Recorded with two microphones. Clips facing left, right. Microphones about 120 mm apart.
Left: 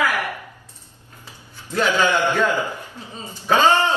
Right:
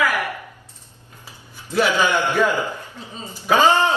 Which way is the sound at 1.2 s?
15° right (ahead or behind).